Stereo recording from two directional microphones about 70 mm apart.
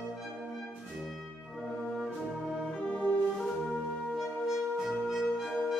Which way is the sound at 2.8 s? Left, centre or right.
Centre.